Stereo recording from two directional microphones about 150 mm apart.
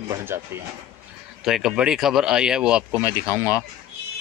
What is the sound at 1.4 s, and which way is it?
Speech, 5° right (ahead or behind).